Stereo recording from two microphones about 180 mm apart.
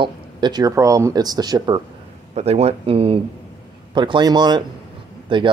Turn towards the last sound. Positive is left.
turn(degrees=-25)  # may be behind; listen again after turning